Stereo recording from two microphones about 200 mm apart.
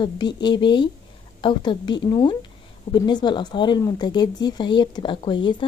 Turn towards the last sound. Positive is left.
turn(degrees=25)  # may be behind; listen again after turning